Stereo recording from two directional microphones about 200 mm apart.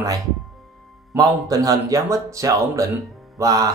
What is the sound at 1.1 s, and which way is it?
Speech, 15° right (ahead or behind).